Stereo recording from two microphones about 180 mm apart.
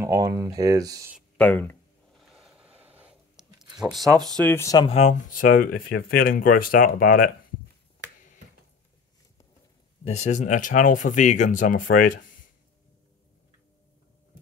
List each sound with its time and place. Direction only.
0.0 s speech: 20° right (ahead or behind)
1.4 s a sound: 10° left (ahead or behind)
2.3 s a sound: 5° right (ahead or behind)
3.8 s speech: centre (ahead or behind); by 4.8 s 15° left (ahead or behind)
4.8 s speech: 35° left (ahead or behind); by 7.2 s 50° left (ahead or behind)
10.0 s speech: 40° left (ahead or behind)